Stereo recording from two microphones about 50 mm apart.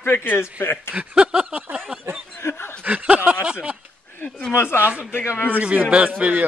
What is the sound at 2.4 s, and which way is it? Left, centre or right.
Snicker, left.